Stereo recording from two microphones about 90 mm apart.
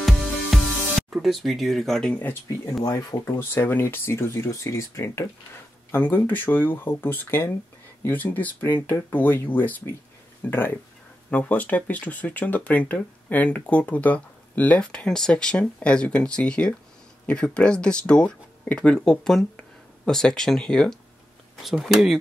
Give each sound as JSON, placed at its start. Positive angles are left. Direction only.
{"t": 0.0, "sound": "music", "side_deg": 0}
{"t": 2.8, "sound": "speech", "side_deg": 45}
{"t": 3.3, "sound": "speech", "side_deg": 25}
{"t": 5.9, "sound": "speech", "side_deg": 20}
{"t": 21.6, "sound": "speech", "side_deg": 0}